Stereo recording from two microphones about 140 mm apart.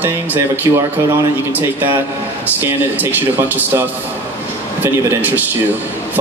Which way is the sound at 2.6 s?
15° right (ahead or behind).